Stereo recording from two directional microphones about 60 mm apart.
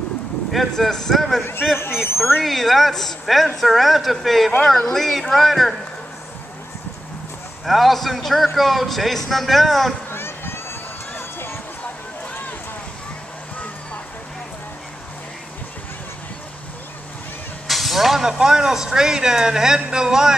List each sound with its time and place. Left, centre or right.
0.5 s a man's voice: centre
2.4 s a man's voice: centre
7.6 s a man's voice: centre
10.1 s a sound: left
17.6 s speech: centre